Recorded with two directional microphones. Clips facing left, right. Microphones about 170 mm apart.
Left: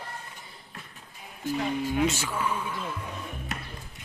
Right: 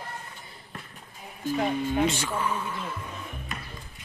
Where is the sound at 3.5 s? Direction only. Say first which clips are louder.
Left 2 dB; 75° left (ahead or behind).